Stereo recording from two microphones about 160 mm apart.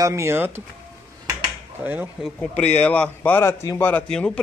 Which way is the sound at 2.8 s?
10° left (ahead or behind).